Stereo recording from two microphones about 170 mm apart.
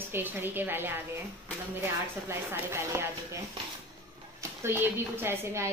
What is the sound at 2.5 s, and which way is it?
Speech, 15° right (ahead or behind).